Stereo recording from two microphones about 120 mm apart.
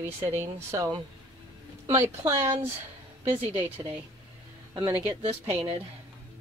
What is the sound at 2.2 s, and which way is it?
Speech, 20° right (ahead or behind).